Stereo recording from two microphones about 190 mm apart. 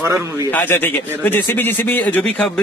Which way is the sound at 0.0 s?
15° right (ahead or behind).